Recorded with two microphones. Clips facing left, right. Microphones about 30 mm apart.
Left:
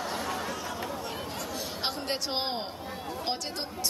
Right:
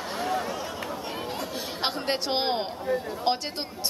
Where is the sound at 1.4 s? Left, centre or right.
Right.